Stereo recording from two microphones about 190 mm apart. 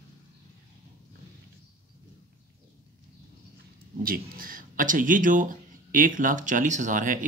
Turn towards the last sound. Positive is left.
turn(degrees=-45)  # may be behind; listen again after turning